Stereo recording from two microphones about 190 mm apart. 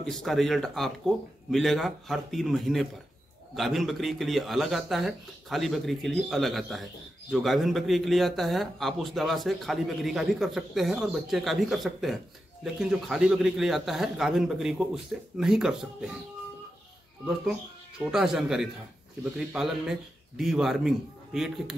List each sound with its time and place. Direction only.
0.0 s speech: centre (ahead or behind)
17.2 s speech: 5° right (ahead or behind)